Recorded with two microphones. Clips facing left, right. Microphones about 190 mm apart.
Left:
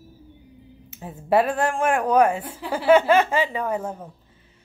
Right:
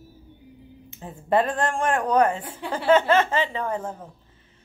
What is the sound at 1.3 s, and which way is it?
Speech, 10° left (ahead or behind).